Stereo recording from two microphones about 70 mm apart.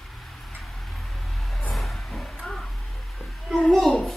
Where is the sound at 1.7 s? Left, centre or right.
Centre.